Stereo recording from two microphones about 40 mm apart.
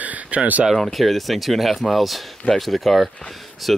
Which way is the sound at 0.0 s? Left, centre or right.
Right.